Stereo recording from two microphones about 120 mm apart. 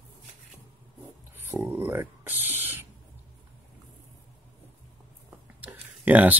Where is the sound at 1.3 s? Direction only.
15° right (ahead or behind).